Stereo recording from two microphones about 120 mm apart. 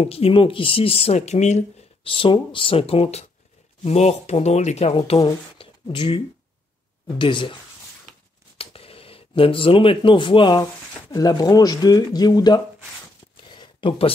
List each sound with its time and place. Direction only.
0.0 s speech: 55° left (ahead or behind)
2.0 s speech: 45° left (ahead or behind); by 4.9 s 65° left (ahead or behind)
4.9 s speech: 55° left (ahead or behind)
8.5 s speech: 50° left (ahead or behind); by 12.6 s 35° left (ahead or behind)
13.5 s a sound: 45° left (ahead or behind)